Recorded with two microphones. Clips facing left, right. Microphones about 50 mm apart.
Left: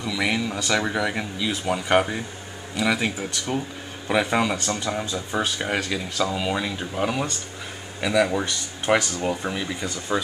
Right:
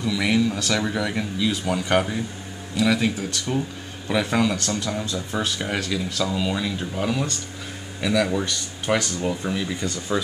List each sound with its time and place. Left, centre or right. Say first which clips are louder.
0.0 s speech: right 3 dB; centre